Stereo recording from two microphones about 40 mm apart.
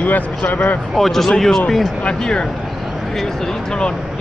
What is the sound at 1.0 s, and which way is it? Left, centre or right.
Speech, centre.